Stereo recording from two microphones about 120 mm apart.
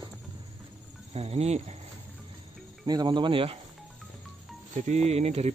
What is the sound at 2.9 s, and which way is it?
Speech, 35° right (ahead or behind).